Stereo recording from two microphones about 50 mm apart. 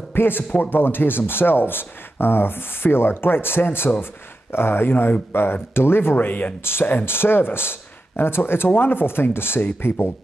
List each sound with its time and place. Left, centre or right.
0.1 s a man's voice: left
6.1 s speech: left
6.6 s speech: left